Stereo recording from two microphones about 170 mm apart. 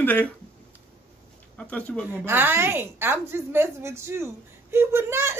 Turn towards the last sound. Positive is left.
turn(degrees=-15)  # may be behind; listen again after turning